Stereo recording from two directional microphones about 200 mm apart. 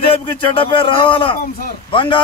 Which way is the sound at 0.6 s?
25° left (ahead or behind).